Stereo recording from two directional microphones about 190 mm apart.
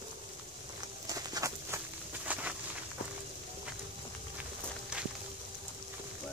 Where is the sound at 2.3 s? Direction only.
10° right (ahead or behind).